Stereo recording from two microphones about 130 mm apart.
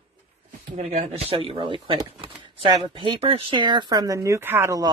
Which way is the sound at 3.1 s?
50° right (ahead or behind).